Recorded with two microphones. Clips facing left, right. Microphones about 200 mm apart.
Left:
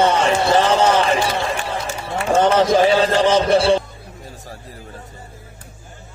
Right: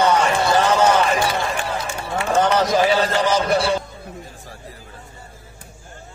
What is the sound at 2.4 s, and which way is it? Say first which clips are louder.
A man's voice: left 3 dB; 30° left (ahead or behind).